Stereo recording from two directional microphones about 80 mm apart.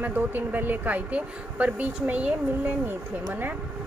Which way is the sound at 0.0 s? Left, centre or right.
Right.